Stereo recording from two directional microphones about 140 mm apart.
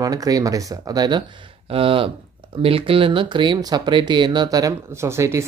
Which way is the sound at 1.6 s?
40° right (ahead or behind).